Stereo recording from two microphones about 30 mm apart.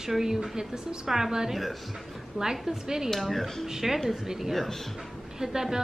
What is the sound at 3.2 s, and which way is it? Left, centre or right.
Speech, centre.